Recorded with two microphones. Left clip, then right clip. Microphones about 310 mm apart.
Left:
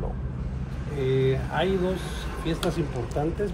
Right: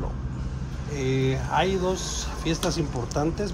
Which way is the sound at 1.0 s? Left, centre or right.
Right.